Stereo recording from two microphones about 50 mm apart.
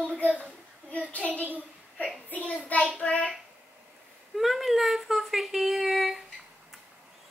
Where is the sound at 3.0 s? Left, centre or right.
Left.